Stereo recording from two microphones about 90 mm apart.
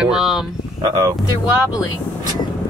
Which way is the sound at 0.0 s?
5° right (ahead or behind).